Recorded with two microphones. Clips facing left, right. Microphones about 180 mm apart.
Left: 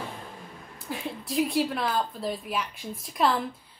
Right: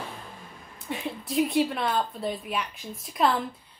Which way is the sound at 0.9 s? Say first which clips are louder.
Right 1 dB; centre (ahead or behind).